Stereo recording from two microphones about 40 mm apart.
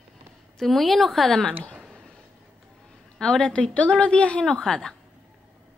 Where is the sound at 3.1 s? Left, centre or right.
Centre.